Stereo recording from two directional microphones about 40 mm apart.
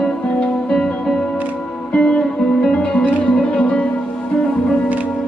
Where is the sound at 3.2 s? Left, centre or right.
Left.